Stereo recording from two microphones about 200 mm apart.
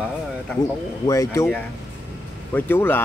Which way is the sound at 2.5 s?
10° left (ahead or behind).